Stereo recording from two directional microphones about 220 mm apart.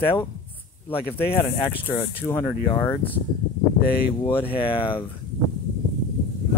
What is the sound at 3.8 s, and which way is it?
Speech, 45° left (ahead or behind).